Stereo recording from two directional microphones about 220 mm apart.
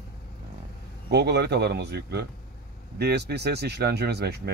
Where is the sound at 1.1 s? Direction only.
50° right (ahead or behind).